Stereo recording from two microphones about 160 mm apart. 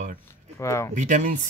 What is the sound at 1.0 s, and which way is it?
Speech, 50° right (ahead or behind).